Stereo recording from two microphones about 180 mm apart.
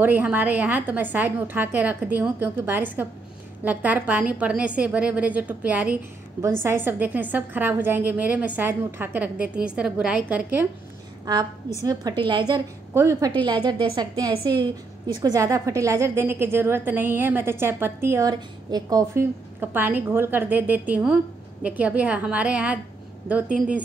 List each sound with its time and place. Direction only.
0.0 s a woman's voice: 10° right (ahead or behind)
11.8 s a woman's voice: 20° right (ahead or behind)
12.9 s a woman's voice: 15° right (ahead or behind)